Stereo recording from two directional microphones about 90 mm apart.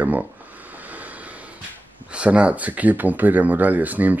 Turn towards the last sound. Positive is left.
turn(degrees=-20)  # may be behind; listen again after turning